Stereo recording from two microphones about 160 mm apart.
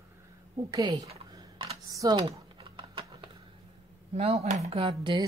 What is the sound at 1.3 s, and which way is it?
Typing, 25° right (ahead or behind).